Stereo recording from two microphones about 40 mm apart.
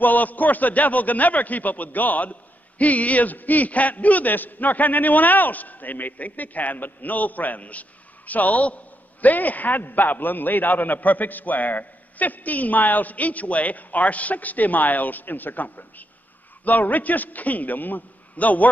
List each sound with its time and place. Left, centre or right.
0.0 s a man's voice: left